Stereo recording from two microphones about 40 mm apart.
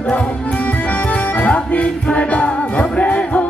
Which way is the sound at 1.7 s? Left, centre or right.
Left.